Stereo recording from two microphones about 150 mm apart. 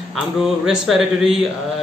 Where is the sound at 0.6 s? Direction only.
Centre (ahead or behind).